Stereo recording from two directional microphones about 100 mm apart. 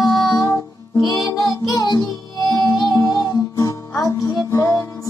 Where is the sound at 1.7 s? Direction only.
45° left (ahead or behind).